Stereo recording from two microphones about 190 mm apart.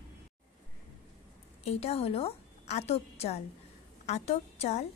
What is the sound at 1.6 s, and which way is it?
A woman's voice, 30° left (ahead or behind).